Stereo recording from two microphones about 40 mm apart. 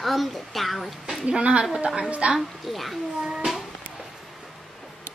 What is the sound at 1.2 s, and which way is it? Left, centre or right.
Speech, right.